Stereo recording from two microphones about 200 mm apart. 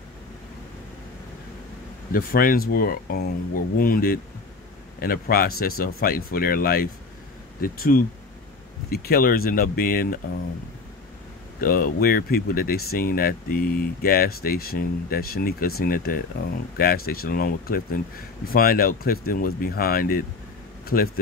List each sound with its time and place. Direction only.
2.1 s speech: 45° left (ahead or behind)
11.6 s speech: 45° left (ahead or behind)